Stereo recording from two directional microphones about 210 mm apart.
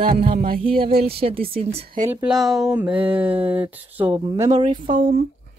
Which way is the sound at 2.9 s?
25° right (ahead or behind).